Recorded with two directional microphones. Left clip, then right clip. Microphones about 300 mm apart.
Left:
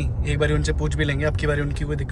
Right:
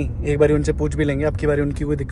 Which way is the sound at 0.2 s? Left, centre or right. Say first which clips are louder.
Right 7 dB; centre.